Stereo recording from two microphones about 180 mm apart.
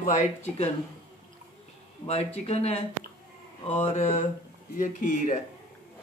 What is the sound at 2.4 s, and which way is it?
Mantra, 35° left (ahead or behind).